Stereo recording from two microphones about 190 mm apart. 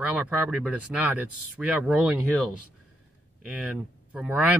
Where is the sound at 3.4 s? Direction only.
5° right (ahead or behind).